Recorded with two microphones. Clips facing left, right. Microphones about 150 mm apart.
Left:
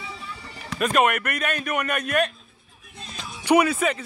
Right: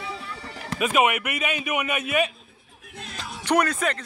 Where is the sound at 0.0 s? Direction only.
75° right (ahead or behind).